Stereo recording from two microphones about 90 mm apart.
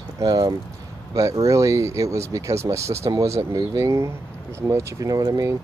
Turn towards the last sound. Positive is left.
turn(degrees=-40)  # may be behind; listen again after turning